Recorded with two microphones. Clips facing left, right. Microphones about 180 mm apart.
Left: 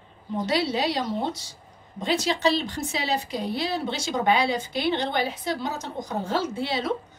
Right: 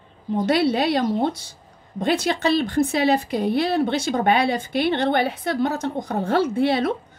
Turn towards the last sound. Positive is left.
turn(degrees=-60)  # may be behind; listen again after turning